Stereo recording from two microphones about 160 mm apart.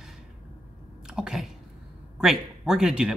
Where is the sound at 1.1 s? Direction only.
5° right (ahead or behind).